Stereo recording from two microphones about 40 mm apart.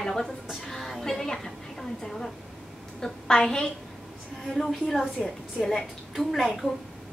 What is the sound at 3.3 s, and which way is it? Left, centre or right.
A woman's voice, centre.